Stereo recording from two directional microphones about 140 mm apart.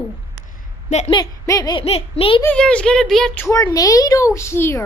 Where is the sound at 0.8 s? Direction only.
55° left (ahead or behind).